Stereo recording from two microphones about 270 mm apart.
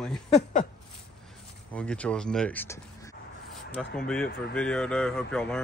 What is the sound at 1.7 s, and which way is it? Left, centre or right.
Speech, centre.